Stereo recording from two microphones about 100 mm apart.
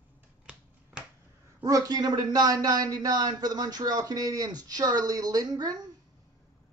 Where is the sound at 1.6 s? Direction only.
35° right (ahead or behind).